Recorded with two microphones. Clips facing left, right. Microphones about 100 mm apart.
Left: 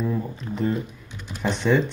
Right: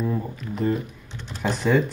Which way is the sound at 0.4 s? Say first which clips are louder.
Left 1 dB; 30° left (ahead or behind).